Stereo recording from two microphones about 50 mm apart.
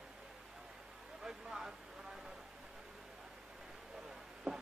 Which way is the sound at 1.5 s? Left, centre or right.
Centre.